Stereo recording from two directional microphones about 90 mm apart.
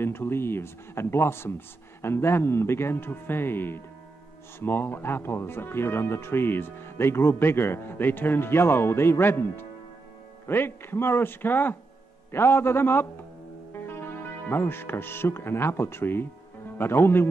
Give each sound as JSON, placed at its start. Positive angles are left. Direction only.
{"t": 0.0, "sound": "speech", "side_deg": 25}
{"t": 14.5, "sound": "speech", "side_deg": 25}